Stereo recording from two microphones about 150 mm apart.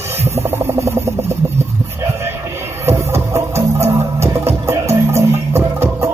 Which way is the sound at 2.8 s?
15° right (ahead or behind).